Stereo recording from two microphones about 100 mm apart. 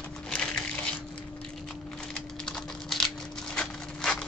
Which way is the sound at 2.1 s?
5° left (ahead or behind).